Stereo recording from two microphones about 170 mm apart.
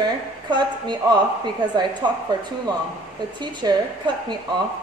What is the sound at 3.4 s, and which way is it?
Speech, 25° right (ahead or behind).